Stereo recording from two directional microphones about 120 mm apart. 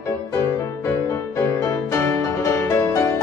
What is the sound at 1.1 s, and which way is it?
Music, 30° left (ahead or behind).